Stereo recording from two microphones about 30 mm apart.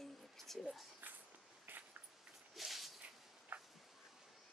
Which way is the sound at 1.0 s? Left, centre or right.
Right.